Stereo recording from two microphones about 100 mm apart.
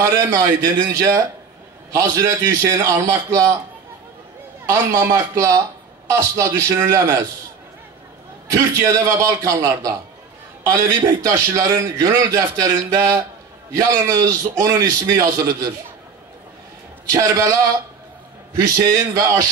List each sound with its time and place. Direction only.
0.0 s a man's voice: 35° right (ahead or behind)
4.6 s a man's voice: 35° right (ahead or behind)
8.5 s a man's voice: 30° right (ahead or behind)
17.1 s a man's voice: 35° right (ahead or behind)
18.8 s a man's voice: 35° right (ahead or behind)